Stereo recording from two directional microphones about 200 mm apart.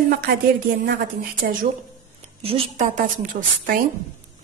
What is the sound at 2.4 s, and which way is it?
Speech, 30° right (ahead or behind).